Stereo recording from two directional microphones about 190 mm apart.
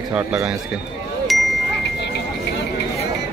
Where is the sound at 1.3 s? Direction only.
Centre (ahead or behind).